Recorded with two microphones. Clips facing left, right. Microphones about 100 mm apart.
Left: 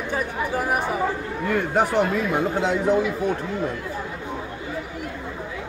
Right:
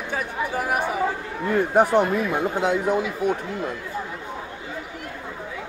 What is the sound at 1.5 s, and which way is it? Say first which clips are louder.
A man's voice: right 3 dB; 20° right (ahead or behind).